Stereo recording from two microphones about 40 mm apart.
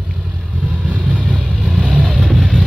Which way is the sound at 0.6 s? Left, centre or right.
Right.